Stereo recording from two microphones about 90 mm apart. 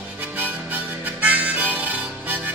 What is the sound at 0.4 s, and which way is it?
Harmonica, 20° right (ahead or behind).